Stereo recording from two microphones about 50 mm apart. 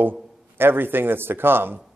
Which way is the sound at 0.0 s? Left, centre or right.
Right.